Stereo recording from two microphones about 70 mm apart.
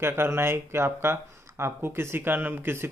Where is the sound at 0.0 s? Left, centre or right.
Right.